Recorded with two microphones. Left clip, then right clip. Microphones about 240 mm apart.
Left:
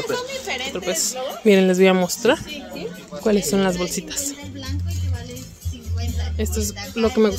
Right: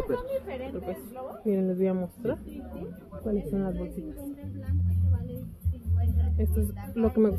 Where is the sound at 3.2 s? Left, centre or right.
Left.